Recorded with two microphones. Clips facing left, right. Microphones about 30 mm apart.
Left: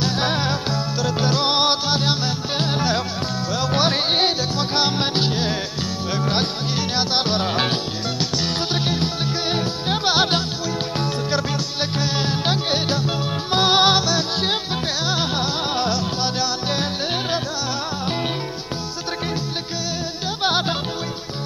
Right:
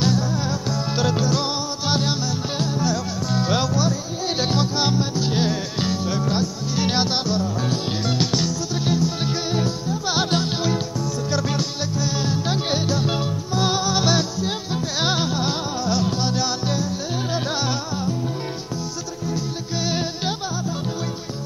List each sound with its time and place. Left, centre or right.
0.4 s music: left
2.6 s music: left
3.7 s music: left
6.0 s music: left
6.8 s music: centre
7.2 s music: left
12.0 s music: left
13.5 s music: left
15.9 s music: left